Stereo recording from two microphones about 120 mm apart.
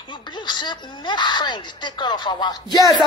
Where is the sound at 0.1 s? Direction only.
40° left (ahead or behind).